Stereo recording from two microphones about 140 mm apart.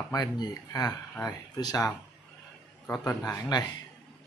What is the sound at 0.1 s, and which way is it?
Speech, 30° left (ahead or behind).